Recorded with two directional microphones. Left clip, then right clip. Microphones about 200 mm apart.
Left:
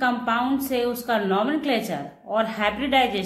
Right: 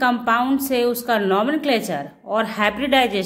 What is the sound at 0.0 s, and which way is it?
A woman's voice, 45° right (ahead or behind).